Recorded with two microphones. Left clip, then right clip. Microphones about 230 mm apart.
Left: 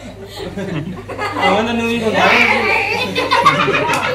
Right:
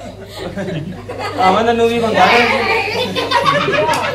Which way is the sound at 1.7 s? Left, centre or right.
Left.